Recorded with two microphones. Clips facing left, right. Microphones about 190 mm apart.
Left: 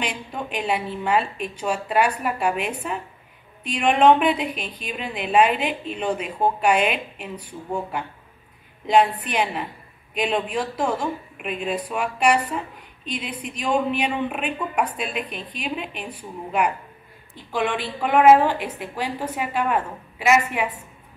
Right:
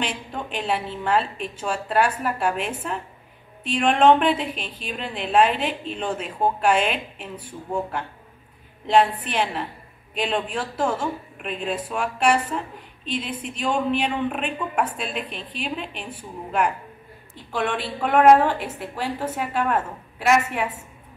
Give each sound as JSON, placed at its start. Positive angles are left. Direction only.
{"t": 0.0, "sound": "a woman's voice", "side_deg": 10}
{"t": 9.3, "sound": "a woman's voice", "side_deg": 5}
{"t": 17.6, "sound": "a woman's voice", "side_deg": 5}